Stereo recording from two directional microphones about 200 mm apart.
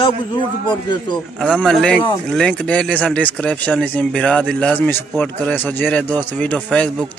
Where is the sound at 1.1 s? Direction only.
Centre (ahead or behind).